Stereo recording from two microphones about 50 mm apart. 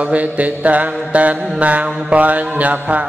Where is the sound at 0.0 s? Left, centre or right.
Right.